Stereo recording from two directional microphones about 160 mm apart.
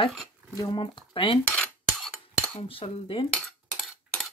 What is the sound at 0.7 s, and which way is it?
Speech, 30° left (ahead or behind).